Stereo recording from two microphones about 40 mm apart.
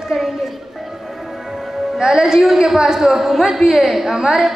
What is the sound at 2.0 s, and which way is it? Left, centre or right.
A woman's voice, centre.